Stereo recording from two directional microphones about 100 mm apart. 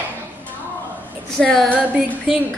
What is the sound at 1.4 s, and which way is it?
Female singing, 5° left (ahead or behind).